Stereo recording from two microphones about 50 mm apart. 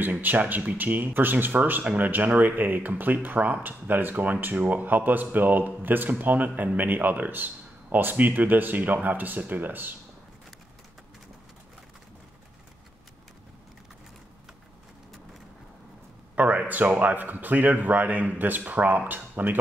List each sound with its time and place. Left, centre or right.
0.0 s speech: right
16.3 s speech: right